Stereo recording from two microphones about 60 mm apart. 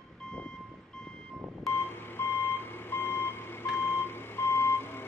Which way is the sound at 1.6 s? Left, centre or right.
Left.